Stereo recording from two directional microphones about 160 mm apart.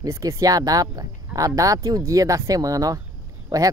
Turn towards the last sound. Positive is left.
turn(degrees=-20)  # may be behind; listen again after turning